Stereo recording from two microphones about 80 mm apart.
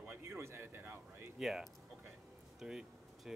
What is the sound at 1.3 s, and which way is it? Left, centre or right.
Speech, centre.